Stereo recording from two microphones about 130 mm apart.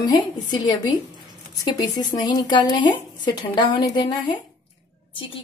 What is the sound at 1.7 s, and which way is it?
Speech, 30° left (ahead or behind).